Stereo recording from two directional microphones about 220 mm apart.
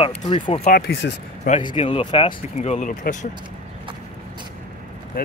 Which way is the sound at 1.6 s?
25° left (ahead or behind).